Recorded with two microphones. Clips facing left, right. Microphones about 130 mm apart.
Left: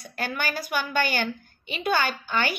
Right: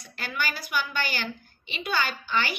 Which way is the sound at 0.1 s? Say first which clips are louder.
Left 3 dB; 45° left (ahead or behind).